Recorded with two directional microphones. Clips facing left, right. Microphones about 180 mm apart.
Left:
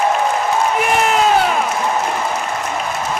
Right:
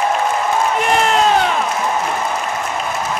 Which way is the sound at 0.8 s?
5° left (ahead or behind).